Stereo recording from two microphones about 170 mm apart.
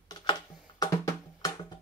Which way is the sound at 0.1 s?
25° left (ahead or behind).